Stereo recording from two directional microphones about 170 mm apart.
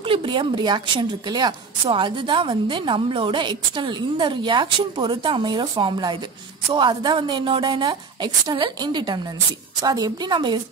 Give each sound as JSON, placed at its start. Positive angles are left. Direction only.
{"t": 0.0, "sound": "a woman's voice", "side_deg": -30}